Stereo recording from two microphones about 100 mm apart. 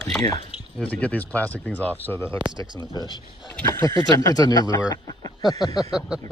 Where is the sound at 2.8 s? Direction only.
40° left (ahead or behind).